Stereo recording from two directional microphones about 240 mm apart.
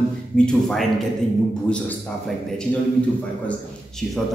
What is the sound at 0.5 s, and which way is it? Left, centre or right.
A man's voice, centre.